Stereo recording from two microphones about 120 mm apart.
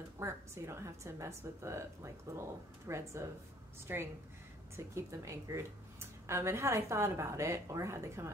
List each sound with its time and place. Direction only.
0.2 s a woman's voice: 25° right (ahead or behind)